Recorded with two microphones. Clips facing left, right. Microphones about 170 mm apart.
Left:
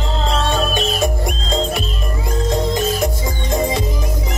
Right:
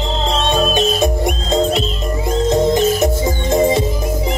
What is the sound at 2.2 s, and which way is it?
Music, 20° right (ahead or behind).